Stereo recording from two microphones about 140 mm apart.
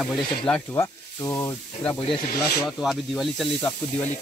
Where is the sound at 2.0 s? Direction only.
35° left (ahead or behind).